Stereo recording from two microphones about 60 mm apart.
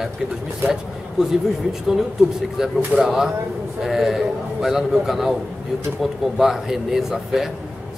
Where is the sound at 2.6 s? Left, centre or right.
Centre.